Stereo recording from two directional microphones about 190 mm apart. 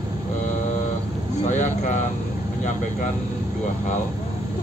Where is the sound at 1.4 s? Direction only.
40° left (ahead or behind).